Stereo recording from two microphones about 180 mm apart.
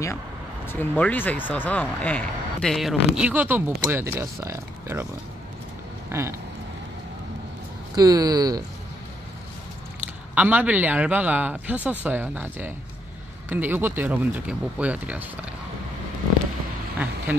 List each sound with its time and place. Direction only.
0.7 s a man's voice: 10° left (ahead or behind); by 5.0 s 15° right (ahead or behind)
6.0 s a sound: 15° right (ahead or behind)
7.9 s speech: 20° right (ahead or behind)
10.3 s a man's voice: 10° right (ahead or behind)
16.9 s vehicle: 10° right (ahead or behind)